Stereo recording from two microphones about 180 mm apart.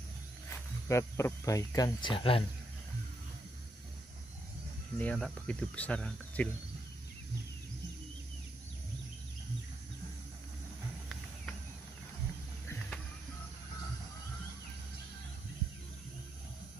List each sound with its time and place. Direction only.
0.5 s speech: 15° left (ahead or behind)
4.9 s speech: 5° left (ahead or behind)